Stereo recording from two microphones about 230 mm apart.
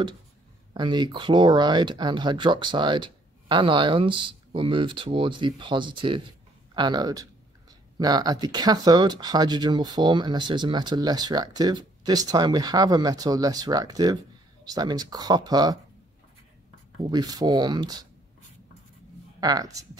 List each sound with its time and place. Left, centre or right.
0.7 s speech: centre
17.1 s speech: centre
19.4 s speech: centre